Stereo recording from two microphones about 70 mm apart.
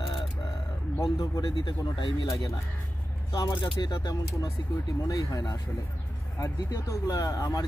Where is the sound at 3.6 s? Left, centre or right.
Left.